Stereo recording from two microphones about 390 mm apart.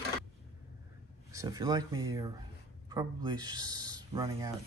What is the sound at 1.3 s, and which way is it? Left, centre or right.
Speech, centre.